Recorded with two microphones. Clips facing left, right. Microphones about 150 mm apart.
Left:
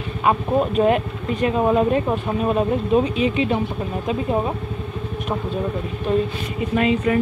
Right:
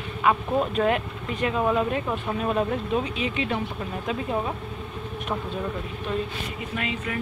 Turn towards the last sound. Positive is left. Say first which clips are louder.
# left 12 dB
turn(degrees=35)  # may be behind; listen again after turning